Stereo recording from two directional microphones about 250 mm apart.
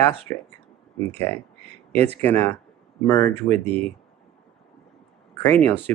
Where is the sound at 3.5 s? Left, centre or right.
Right.